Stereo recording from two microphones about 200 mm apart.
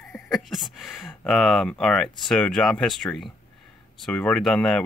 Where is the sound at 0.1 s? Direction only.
Centre (ahead or behind).